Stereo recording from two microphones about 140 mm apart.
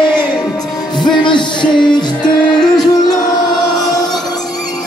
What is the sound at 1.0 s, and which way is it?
Music, 35° left (ahead or behind).